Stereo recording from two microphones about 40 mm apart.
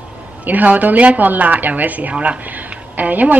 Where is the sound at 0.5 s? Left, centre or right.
Right.